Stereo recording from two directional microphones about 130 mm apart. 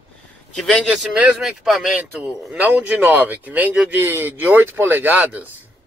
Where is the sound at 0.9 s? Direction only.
5° right (ahead or behind).